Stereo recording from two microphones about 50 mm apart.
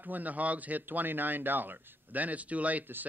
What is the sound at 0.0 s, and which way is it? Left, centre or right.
Speech, right.